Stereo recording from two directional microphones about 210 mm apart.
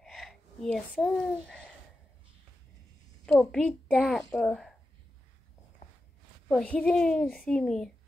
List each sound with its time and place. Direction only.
0.0 s a sound: centre (ahead or behind)
3.3 s a child's voice: 5° left (ahead or behind)
6.5 s a child's voice: 5° left (ahead or behind)